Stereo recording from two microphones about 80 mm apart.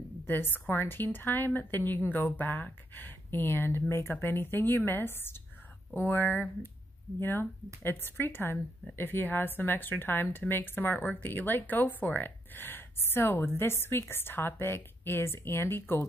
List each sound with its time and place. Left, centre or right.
0.3 s a woman's voice: left